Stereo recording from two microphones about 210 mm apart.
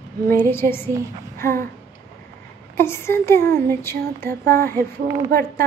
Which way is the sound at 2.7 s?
10° left (ahead or behind).